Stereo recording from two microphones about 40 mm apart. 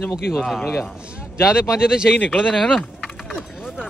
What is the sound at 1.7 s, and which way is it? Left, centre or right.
Speech, centre.